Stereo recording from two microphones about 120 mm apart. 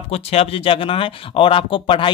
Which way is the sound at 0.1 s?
55° left (ahead or behind).